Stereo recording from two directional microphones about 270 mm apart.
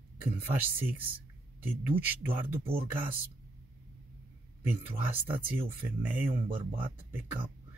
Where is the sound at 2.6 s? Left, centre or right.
Right.